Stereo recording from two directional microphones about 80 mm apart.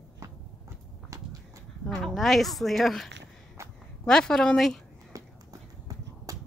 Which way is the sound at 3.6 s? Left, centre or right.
Right.